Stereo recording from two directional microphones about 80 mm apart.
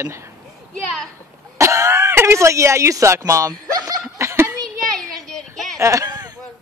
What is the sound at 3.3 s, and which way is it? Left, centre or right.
Snicker, right.